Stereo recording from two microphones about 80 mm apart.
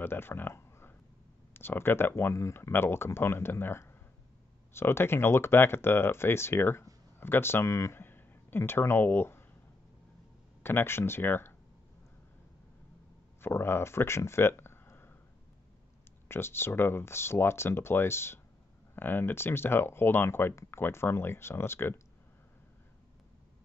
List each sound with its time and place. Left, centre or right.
0.0 s a sound: left
1.5 s speech: left
10.6 s speech: left
13.4 s speech: left
16.3 s speech: left